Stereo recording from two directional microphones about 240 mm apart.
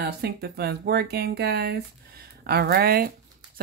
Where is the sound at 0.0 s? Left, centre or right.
Right.